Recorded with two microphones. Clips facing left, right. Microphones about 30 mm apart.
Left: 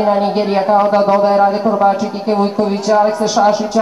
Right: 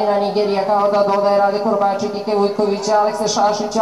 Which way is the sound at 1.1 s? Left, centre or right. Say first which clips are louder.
Left 3 dB; centre.